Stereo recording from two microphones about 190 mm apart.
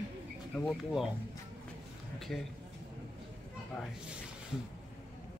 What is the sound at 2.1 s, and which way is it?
Speech, centre (ahead or behind).